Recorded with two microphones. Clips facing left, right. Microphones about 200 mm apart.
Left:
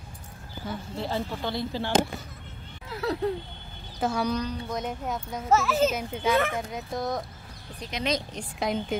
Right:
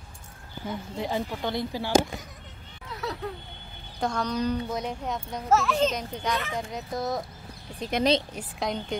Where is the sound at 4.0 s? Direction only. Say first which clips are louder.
Even; 5° left (ahead or behind).